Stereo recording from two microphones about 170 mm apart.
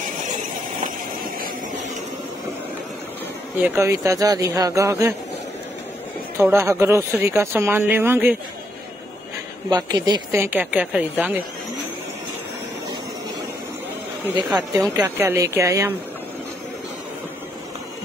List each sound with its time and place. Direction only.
0.8 s vehicle: 55° right (ahead or behind)
3.6 s speech: 15° right (ahead or behind)
6.3 s speech: 15° right (ahead or behind)
9.7 s speech: 20° right (ahead or behind)
14.7 s speech: 20° right (ahead or behind)